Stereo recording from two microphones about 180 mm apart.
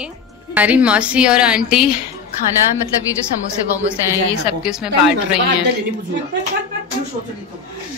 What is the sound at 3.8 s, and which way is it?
A woman's voice, 5° right (ahead or behind).